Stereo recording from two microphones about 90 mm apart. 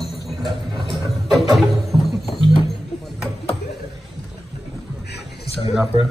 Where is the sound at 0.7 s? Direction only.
60° right (ahead or behind).